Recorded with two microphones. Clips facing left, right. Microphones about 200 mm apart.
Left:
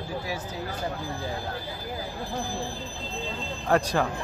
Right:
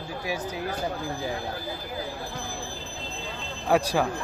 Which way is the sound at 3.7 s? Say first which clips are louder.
Right 1 dB; 10° right (ahead or behind).